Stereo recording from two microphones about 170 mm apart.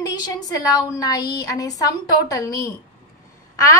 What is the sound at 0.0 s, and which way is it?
A woman's voice, 20° left (ahead or behind).